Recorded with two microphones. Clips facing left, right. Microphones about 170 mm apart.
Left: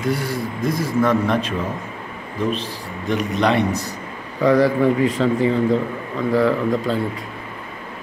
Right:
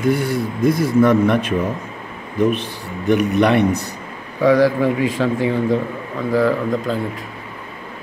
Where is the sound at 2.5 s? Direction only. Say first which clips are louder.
Right 2 dB; 60° right (ahead or behind).